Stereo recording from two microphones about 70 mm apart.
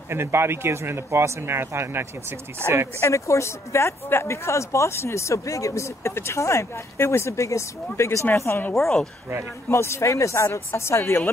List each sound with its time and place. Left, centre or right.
0.1 s speech: right
3.0 s speech: left
8.7 s speech: centre
9.7 s a woman's voice: left